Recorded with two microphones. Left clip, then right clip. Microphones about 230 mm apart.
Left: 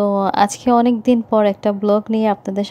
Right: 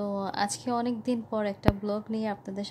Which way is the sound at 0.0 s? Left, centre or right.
Left.